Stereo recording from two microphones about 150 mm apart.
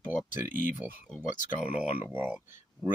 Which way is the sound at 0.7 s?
10° right (ahead or behind).